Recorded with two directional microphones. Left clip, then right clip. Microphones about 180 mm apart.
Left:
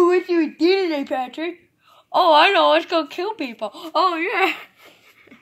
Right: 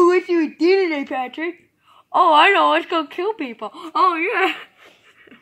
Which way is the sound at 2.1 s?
35° left (ahead or behind).